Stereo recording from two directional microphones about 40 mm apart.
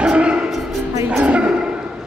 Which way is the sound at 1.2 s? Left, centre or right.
Right.